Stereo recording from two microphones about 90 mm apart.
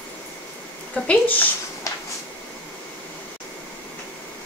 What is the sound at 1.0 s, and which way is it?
Speech, 15° left (ahead or behind).